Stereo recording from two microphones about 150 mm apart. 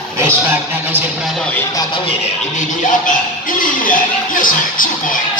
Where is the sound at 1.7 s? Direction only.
25° left (ahead or behind).